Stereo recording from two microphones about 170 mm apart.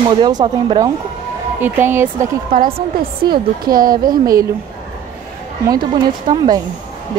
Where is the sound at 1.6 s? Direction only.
15° right (ahead or behind).